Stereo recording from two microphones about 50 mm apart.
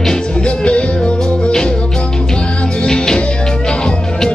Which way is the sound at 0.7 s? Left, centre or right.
Left.